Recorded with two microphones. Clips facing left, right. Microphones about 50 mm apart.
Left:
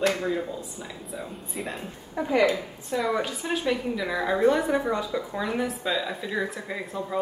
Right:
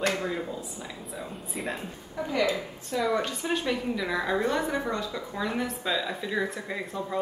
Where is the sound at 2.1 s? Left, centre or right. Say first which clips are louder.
Left 5 dB; left.